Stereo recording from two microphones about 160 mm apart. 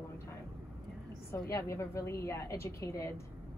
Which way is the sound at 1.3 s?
15° left (ahead or behind).